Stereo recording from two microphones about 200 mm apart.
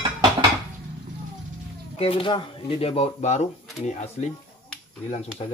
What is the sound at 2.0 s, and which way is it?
Speech, 25° left (ahead or behind).